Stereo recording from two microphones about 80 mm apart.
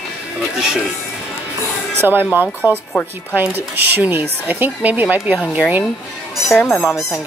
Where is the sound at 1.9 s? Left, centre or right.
Right.